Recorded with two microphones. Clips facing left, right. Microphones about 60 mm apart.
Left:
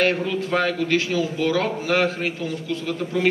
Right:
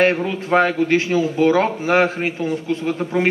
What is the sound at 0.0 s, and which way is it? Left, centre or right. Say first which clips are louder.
A man's voice: right 4 dB; right.